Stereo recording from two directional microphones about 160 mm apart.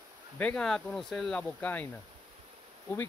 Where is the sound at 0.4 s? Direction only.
5° left (ahead or behind).